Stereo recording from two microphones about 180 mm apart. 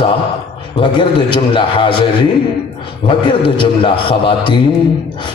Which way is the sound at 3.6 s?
30° left (ahead or behind).